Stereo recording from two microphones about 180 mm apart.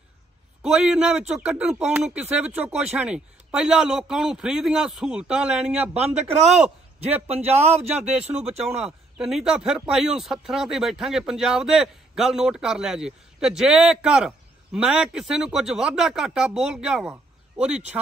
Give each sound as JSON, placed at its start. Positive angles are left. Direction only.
{"t": 0.6, "sound": "a man's voice", "side_deg": -5}
{"t": 7.2, "sound": "a man's voice", "side_deg": -35}
{"t": 8.3, "sound": "speech", "side_deg": -5}
{"t": 17.1, "sound": "a sound", "side_deg": -5}